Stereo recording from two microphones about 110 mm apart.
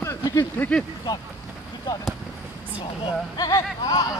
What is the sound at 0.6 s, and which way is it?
Speech, 10° left (ahead or behind).